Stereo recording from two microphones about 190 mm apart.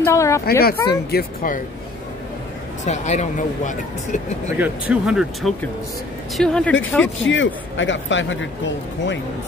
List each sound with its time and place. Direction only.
0.0 s speech: 15° left (ahead or behind)
0.5 s speech: 55° left (ahead or behind)
2.8 s speech: 35° left (ahead or behind)
4.6 s speech: 5° right (ahead or behind); by 7.1 s 10° left (ahead or behind)
7.2 s speech: 75° left (ahead or behind)